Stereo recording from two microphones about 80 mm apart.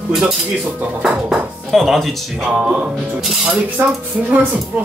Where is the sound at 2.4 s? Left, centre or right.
Centre.